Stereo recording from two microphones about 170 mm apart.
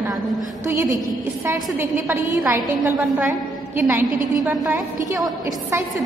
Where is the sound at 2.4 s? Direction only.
10° right (ahead or behind).